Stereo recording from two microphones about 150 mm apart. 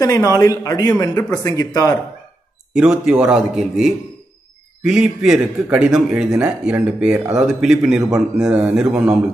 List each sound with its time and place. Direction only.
0.0 s speech: 20° left (ahead or behind)
2.7 s a man's voice: 5° right (ahead or behind)